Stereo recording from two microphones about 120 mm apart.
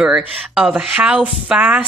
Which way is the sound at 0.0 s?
10° right (ahead or behind).